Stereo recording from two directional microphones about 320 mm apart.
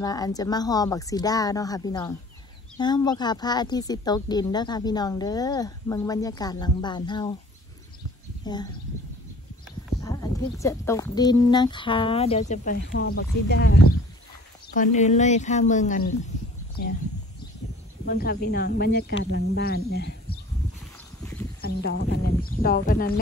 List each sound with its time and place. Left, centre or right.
0.0 s speech: centre
10.6 s speech: centre
16.8 s speech: left
18.0 s speech: left
21.5 s speech: left